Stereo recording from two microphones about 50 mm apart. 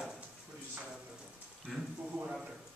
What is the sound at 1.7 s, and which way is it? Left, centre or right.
Speech, centre.